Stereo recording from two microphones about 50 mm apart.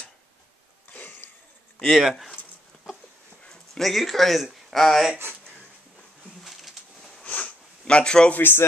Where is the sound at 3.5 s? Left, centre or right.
Centre.